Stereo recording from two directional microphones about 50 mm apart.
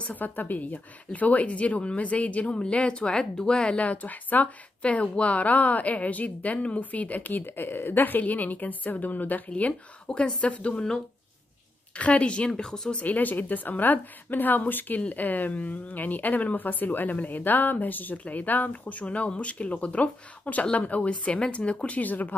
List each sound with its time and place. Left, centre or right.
0.0 s a woman's voice: left
9.5 s speech: left
11.9 s speech: left; by 12.9 s centre
12.9 s a woman's voice: left